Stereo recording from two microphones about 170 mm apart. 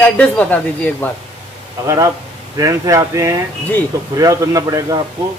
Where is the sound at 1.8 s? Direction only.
20° right (ahead or behind).